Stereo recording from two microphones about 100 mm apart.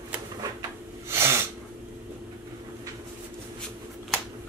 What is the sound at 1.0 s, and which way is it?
Sneeze, 25° right (ahead or behind).